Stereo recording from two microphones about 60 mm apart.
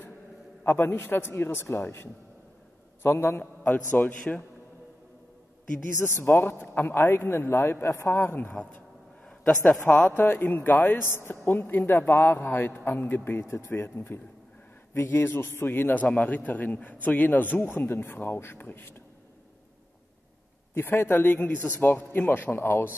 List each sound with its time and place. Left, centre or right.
0.7 s speech: left
3.6 s speech: left
6.1 s speech: left
9.2 s a sound: centre
9.8 s speech: left
20.7 s speech: left